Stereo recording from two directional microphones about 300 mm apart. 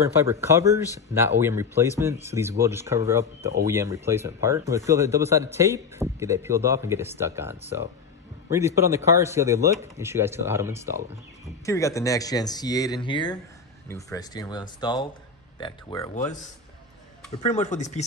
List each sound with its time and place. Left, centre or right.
0.2 s speech: centre
11.4 s speech: centre
17.4 s speech: left